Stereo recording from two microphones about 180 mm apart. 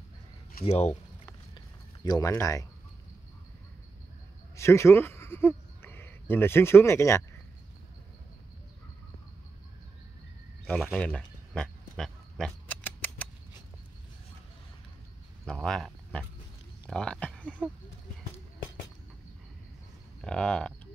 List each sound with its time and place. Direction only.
0.7 s speech: 35° left (ahead or behind)
2.0 s speech: 20° left (ahead or behind)
4.6 s speech: 15° left (ahead or behind)
10.7 s a sound: 5° left (ahead or behind)
15.6 s speech: 5° left (ahead or behind)
20.2 s speech: 5° left (ahead or behind)